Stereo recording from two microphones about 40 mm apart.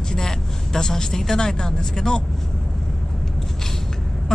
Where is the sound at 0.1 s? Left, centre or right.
Centre.